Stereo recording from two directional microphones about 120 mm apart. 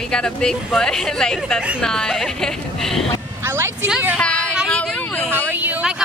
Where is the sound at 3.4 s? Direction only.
20° right (ahead or behind).